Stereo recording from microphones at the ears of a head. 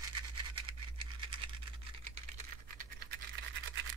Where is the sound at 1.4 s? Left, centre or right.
Right.